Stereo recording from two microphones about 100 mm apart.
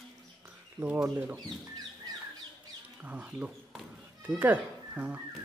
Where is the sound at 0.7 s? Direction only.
20° right (ahead or behind).